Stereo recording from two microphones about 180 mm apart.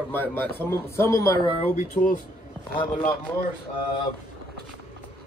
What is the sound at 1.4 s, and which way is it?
Speech, 30° left (ahead or behind).